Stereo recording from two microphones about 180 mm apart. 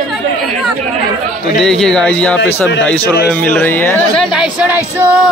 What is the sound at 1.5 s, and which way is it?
Speech, centre (ahead or behind).